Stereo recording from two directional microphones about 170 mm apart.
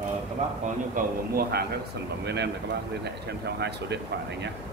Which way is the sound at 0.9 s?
60° right (ahead or behind).